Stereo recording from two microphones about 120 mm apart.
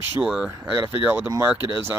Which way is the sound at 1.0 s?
20° right (ahead or behind).